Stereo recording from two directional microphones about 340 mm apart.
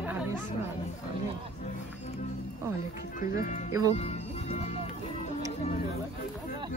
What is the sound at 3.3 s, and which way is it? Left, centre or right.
Speech, left.